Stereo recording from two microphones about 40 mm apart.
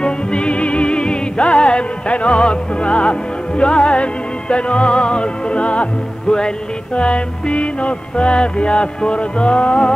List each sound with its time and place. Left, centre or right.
0.0 s music: left